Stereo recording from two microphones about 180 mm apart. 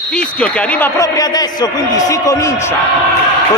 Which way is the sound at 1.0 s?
20° left (ahead or behind).